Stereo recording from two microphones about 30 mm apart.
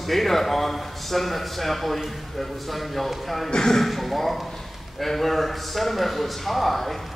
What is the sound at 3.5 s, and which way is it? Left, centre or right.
Speech, centre.